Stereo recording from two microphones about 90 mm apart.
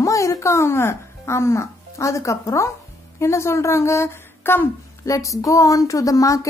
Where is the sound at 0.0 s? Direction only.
35° left (ahead or behind).